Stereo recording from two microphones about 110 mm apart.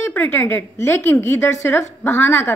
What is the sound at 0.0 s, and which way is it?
A woman's voice, 20° left (ahead or behind).